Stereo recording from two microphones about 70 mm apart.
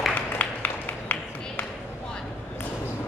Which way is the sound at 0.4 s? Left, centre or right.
Left.